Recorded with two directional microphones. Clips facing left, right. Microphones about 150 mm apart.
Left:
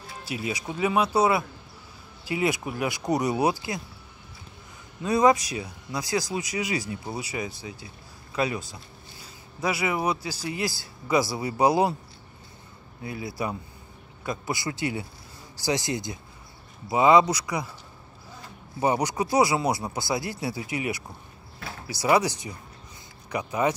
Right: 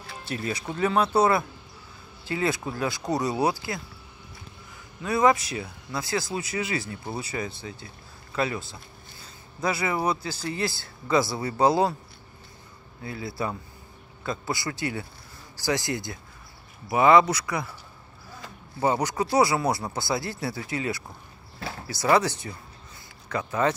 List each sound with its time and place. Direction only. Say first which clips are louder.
0.2 s speech: even; 10° left (ahead or behind)
5.0 s speech: left 1 dB; 20° left (ahead or behind)
13.0 s speech: even; 20° left (ahead or behind)
18.8 s speech: even; 20° left (ahead or behind)